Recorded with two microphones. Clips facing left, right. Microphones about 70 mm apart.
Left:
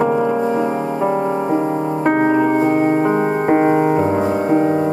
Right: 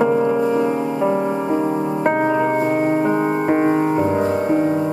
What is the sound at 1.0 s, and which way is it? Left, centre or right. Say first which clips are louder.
Music: left 2 dB; centre.